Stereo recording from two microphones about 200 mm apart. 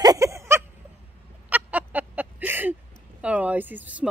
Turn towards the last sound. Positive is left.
turn(degrees=-10)  # may be behind; listen again after turning